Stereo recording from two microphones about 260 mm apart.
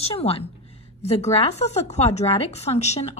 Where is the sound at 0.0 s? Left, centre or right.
Left.